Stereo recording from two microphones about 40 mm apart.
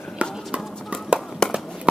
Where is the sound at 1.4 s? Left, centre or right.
Centre.